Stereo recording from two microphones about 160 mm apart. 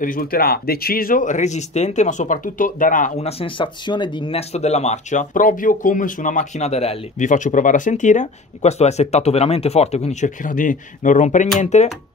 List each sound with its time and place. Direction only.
0.0 s speech: 65° left (ahead or behind)
3.3 s speech: 35° left (ahead or behind)